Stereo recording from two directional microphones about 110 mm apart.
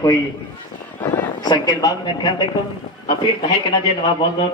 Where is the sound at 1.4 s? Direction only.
35° left (ahead or behind).